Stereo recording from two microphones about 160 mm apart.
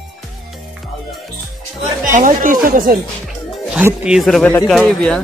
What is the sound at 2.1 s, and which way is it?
Speech, 55° right (ahead or behind).